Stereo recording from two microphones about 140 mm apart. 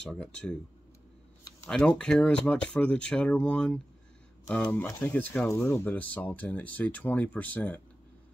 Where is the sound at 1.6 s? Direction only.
5° left (ahead or behind).